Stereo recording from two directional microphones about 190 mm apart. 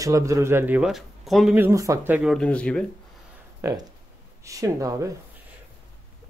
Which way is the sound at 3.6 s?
15° right (ahead or behind).